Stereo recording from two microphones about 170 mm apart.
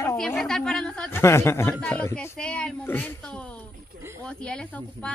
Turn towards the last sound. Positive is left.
turn(degrees=5)  # may be behind; listen again after turning